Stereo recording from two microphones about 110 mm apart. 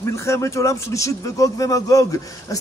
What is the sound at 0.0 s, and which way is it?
Speech, 25° left (ahead or behind).